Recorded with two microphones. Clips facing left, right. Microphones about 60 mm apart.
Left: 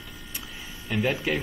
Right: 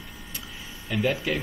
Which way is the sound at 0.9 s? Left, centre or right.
Left.